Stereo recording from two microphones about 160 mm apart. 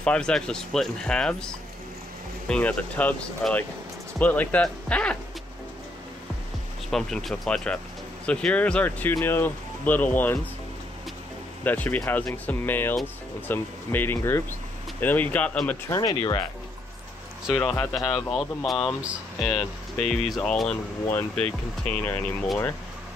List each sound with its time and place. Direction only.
0.0 s speech: 5° left (ahead or behind)
6.9 s speech: 5° left (ahead or behind)
11.6 s speech: 10° left (ahead or behind)
15.9 s speech: 25° left (ahead or behind)
17.6 s speech: 10° left (ahead or behind)
18.1 s speech: centre (ahead or behind)